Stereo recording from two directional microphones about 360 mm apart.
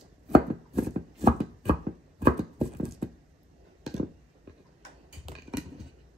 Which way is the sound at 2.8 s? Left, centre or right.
Centre.